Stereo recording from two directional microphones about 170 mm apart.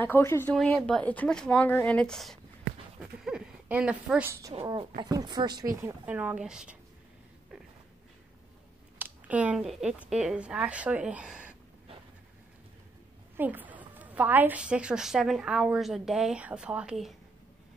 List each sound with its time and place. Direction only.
0.0 s a woman's voice: 15° left (ahead or behind); by 4.6 s 20° right (ahead or behind)
4.6 s speech: 30° right (ahead or behind)
5.8 s speech: 10° right (ahead or behind)
8.9 s speech: 10° right (ahead or behind)
13.4 s a woman's voice: 10° right (ahead or behind)